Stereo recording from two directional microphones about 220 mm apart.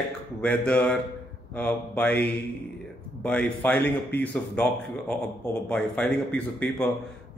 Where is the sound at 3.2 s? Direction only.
5° left (ahead or behind).